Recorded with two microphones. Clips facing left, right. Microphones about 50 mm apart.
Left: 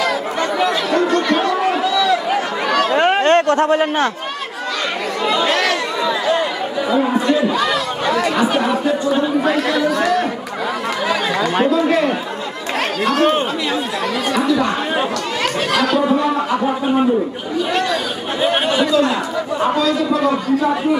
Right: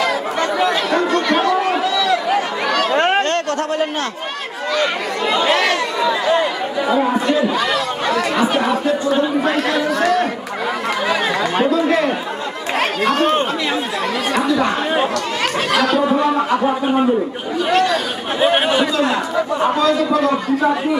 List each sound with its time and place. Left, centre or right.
0.0 s chatter: centre
1.8 s a sound: centre
3.2 s a sound: left
5.2 s speech: centre
17.6 s chatter: centre
18.4 s speech: centre